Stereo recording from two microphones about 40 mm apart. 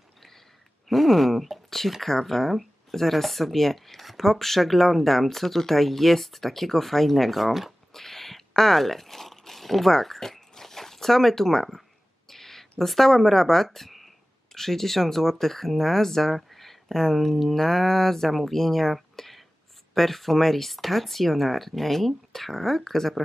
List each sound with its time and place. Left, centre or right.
0.8 s speech: centre
7.9 s a sound: centre
12.3 s speech: centre